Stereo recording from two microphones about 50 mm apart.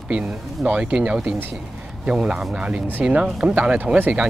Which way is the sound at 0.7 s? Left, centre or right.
Right.